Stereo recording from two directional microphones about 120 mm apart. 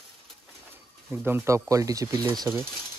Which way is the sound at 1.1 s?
20° right (ahead or behind).